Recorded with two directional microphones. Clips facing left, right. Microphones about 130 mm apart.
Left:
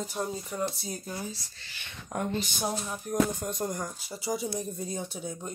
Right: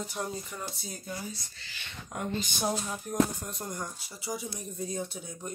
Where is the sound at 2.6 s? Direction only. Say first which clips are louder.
Right 1 dB; 5° left (ahead or behind).